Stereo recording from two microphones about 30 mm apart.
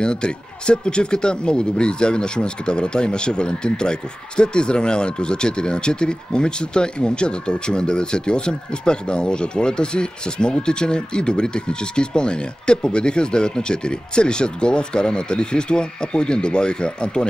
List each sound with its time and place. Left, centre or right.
0.0 s speech: left